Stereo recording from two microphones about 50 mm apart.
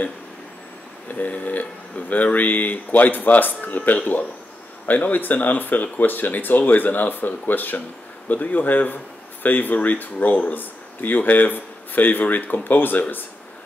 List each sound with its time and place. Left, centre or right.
1.1 s speech: left